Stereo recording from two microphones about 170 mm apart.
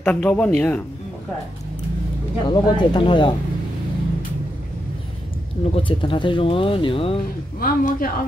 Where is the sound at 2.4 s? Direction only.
25° left (ahead or behind).